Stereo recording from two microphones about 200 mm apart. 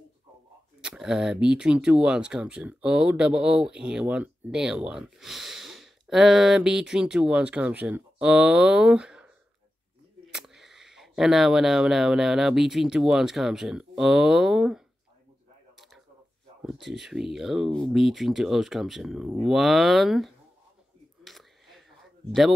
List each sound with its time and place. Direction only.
0.7 s speech: 5° right (ahead or behind)
10.3 s speech: centre (ahead or behind)
16.6 s speech: centre (ahead or behind)
21.2 s a sound: centre (ahead or behind)